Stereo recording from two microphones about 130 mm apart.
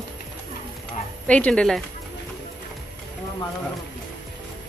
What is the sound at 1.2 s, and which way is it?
Speech, 10° left (ahead or behind).